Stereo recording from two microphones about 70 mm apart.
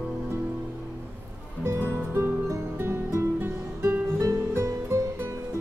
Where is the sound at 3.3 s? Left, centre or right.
Right.